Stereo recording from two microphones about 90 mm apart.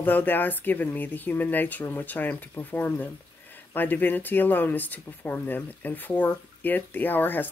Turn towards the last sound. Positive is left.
turn(degrees=20)  # may be behind; listen again after turning